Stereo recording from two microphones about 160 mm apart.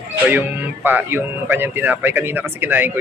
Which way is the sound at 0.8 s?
10° right (ahead or behind).